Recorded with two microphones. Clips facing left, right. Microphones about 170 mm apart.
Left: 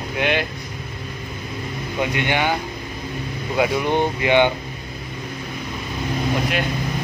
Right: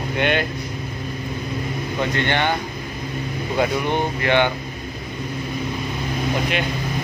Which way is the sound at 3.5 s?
15° left (ahead or behind).